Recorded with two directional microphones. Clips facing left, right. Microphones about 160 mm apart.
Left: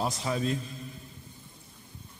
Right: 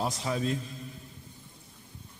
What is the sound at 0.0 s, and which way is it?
Speech, 10° left (ahead or behind).